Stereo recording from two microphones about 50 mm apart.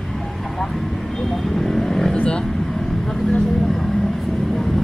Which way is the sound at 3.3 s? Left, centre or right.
Centre.